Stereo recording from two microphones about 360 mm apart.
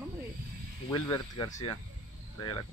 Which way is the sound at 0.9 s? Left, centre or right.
Centre.